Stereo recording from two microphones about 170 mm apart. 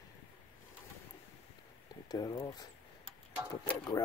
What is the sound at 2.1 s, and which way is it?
Speech, 20° left (ahead or behind).